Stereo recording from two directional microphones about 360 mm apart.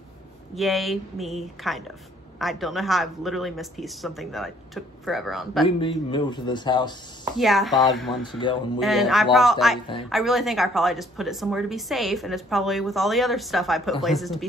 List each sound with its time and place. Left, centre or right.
0.6 s speech: centre
5.8 s speech: centre
7.3 s speech: centre
8.2 s speech: centre
8.7 s speech: centre